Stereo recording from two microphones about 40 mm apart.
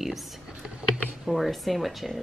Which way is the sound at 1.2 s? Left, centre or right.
Centre.